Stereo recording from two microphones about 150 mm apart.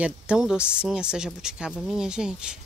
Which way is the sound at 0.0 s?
5° right (ahead or behind).